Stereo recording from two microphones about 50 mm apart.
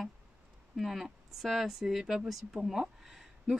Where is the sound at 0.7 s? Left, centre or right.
Centre.